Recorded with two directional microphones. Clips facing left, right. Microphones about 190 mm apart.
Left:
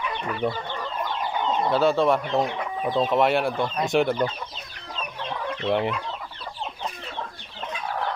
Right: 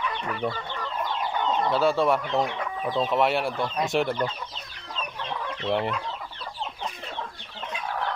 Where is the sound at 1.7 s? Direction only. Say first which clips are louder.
Left 3 dB; 10° right (ahead or behind).